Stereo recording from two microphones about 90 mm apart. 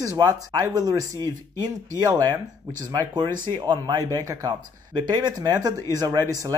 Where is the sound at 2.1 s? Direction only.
35° right (ahead or behind).